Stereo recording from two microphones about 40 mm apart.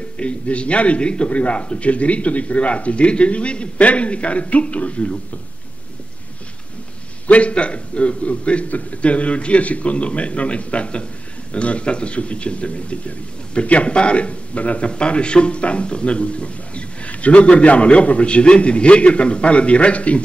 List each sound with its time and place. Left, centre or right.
0.2 s a man's voice: left
7.2 s a man's voice: left